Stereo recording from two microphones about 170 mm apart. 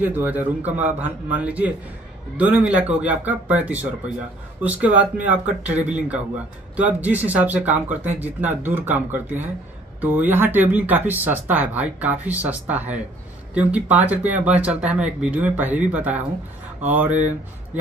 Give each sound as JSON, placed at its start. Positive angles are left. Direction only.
{"t": 0.0, "sound": "speech", "side_deg": -10}